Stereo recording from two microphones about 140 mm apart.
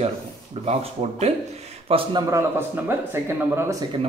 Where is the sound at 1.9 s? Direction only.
40° right (ahead or behind).